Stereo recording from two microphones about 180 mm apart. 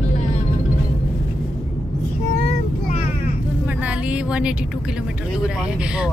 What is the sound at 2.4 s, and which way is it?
Child singing, 40° left (ahead or behind).